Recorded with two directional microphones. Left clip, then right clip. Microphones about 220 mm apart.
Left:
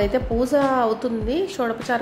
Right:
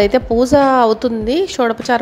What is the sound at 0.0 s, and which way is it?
A woman's voice, 35° right (ahead or behind).